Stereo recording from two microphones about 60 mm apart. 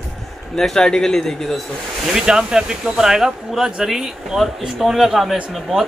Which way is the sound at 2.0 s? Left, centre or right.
Centre.